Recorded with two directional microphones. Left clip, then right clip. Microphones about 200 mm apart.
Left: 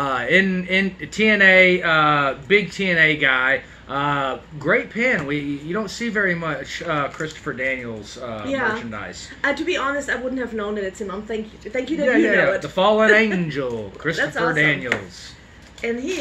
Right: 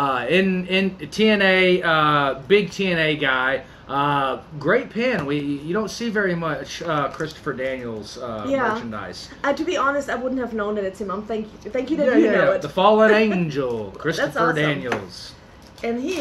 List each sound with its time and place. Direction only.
0.0 s speech: 15° right (ahead or behind)
8.5 s a woman's voice: 10° left (ahead or behind)
12.6 s speech: 15° right (ahead or behind)
14.1 s a woman's voice: 10° left (ahead or behind)
14.5 s speech: 15° right (ahead or behind)
15.8 s a woman's voice: 5° left (ahead or behind)